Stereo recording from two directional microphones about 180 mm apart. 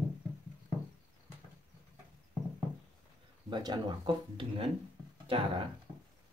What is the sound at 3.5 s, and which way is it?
Speech, 25° right (ahead or behind).